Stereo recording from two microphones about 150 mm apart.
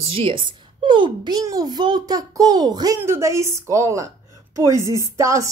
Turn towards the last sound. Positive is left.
turn(degrees=-20)  # may be behind; listen again after turning